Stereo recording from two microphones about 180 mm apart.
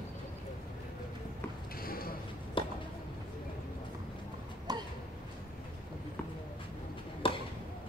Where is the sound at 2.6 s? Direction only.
30° left (ahead or behind).